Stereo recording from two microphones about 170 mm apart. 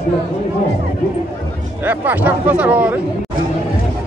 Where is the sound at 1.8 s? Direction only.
10° right (ahead or behind).